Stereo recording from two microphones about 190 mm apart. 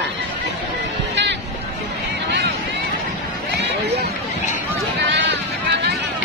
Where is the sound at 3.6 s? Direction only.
65° right (ahead or behind).